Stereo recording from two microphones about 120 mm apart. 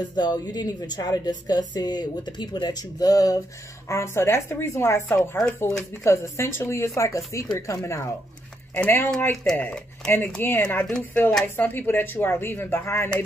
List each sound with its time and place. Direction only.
0.1 s a woman's voice: 35° left (ahead or behind)